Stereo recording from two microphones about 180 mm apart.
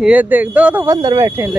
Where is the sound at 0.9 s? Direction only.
20° right (ahead or behind).